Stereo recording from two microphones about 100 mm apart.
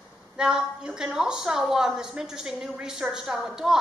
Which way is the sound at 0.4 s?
10° right (ahead or behind).